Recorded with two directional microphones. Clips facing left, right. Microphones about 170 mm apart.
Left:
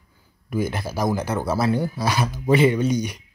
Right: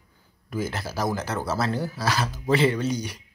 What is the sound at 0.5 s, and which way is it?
Speech, 15° left (ahead or behind).